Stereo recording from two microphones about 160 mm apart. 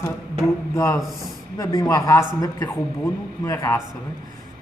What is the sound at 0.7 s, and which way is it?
Speech, 15° left (ahead or behind).